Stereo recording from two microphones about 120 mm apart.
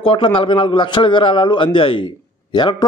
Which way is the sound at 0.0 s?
50° left (ahead or behind).